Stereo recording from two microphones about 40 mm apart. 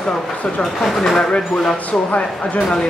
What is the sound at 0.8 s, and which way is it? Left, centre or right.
Speech, centre.